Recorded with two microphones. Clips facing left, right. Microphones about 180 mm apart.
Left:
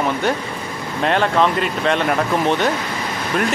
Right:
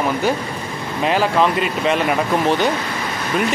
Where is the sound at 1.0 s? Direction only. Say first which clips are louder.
Even; 5° right (ahead or behind).